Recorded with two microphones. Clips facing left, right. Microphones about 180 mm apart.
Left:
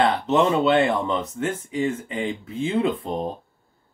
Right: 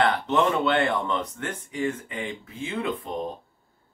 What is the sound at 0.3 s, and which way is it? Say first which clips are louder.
Speech: left 4 dB; 25° left (ahead or behind).